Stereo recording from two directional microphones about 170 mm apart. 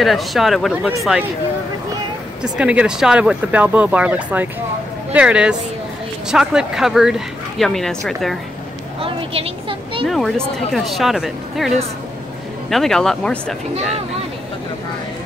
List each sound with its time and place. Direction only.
0.0 s speech: centre (ahead or behind)
2.4 s speech: 5° right (ahead or behind)
9.0 s a woman's voice: 35° right (ahead or behind)
10.0 s speech: centre (ahead or behind)